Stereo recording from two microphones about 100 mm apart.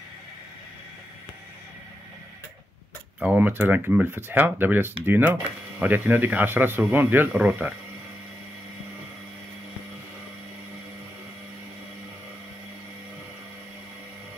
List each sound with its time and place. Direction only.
3.2 s speech: 15° right (ahead or behind)